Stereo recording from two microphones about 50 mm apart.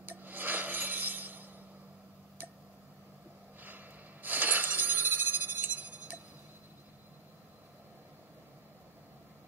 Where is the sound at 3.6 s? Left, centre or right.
Right.